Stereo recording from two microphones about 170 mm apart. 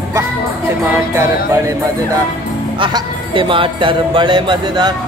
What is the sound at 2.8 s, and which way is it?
Speech, 25° right (ahead or behind).